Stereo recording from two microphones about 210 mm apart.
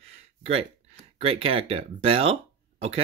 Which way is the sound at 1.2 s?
25° right (ahead or behind).